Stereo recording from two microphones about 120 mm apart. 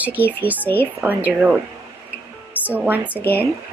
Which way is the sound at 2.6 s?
15° right (ahead or behind).